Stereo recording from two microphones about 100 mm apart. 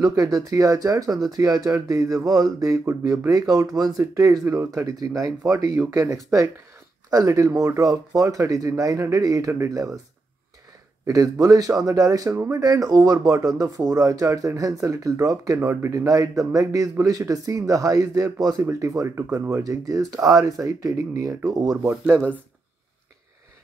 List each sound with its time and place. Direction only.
0.0 s speech: 40° right (ahead or behind)
11.1 s speech: 35° right (ahead or behind)
21.8 s speech: 20° right (ahead or behind)